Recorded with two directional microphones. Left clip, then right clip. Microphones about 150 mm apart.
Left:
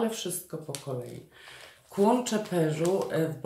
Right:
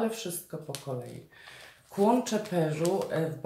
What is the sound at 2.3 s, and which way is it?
Speech, 20° left (ahead or behind).